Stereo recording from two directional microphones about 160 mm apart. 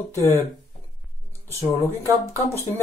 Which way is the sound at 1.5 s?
15° left (ahead or behind).